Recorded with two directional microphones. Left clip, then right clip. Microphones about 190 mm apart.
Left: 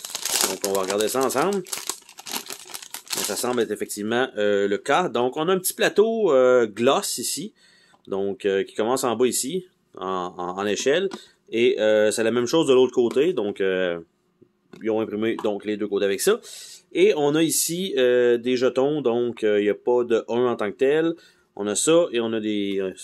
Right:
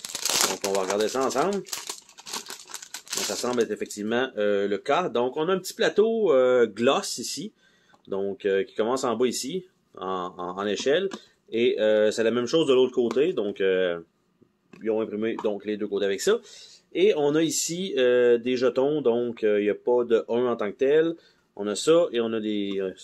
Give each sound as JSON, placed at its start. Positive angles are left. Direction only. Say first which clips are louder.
{"t": 0.6, "sound": "speech", "louder": "left 2 dB", "side_deg": 20}
{"t": 3.4, "sound": "speech", "louder": "left 2 dB", "side_deg": 25}